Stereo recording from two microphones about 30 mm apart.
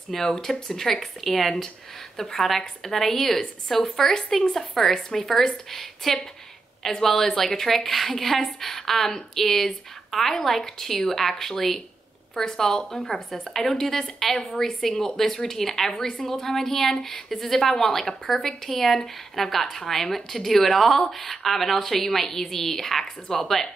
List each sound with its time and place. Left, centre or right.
0.1 s a woman's voice: centre
13.1 s a woman's voice: centre